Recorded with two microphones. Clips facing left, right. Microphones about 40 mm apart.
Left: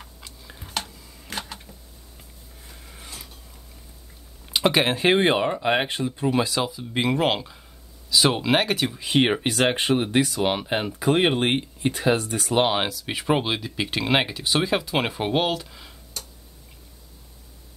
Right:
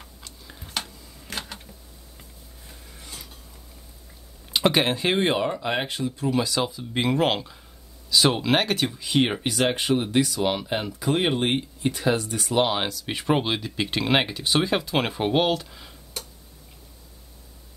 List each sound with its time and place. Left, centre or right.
0.0 s tick-tock: centre
1.0 s a sound: centre
4.5 s a sound: centre
4.9 s speech: left
6.6 s speech: centre
9.0 s speech: left
12.8 s speech: centre